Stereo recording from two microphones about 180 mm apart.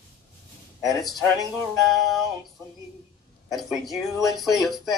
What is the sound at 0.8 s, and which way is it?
Speech, centre (ahead or behind).